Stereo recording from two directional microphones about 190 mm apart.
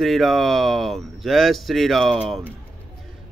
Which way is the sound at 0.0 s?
Centre (ahead or behind).